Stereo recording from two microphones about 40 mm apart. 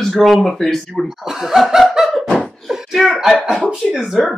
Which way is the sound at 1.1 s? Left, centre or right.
Centre.